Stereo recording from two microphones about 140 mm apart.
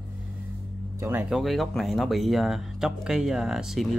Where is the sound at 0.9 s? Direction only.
20° right (ahead or behind).